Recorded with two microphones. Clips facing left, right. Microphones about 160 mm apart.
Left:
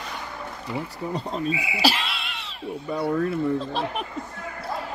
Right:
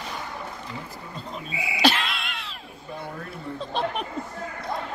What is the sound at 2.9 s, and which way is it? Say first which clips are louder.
Speech: left 10 dB; 75° left (ahead or behind).